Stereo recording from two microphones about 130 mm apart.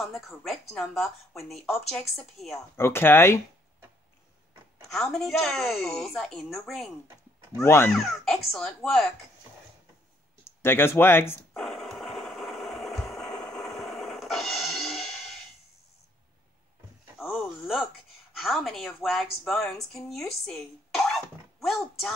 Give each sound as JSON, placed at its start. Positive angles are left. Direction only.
{"t": 0.4, "sound": "speech", "side_deg": 0}
{"t": 2.8, "sound": "speech", "side_deg": 15}
{"t": 4.8, "sound": "speech", "side_deg": 5}
{"t": 7.5, "sound": "speech", "side_deg": 20}
{"t": 7.9, "sound": "speech", "side_deg": 0}
{"t": 10.4, "sound": "speech", "side_deg": 15}
{"t": 11.5, "sound": "a sound", "side_deg": 5}
{"t": 17.2, "sound": "wail", "side_deg": -5}
{"t": 18.3, "sound": "a woman's voice", "side_deg": 0}